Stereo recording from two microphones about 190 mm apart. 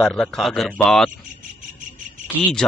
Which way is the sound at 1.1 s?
45° right (ahead or behind).